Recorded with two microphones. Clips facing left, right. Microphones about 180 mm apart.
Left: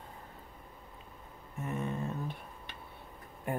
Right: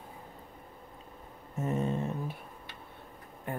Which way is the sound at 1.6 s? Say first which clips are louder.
Right 5 dB; 30° right (ahead or behind).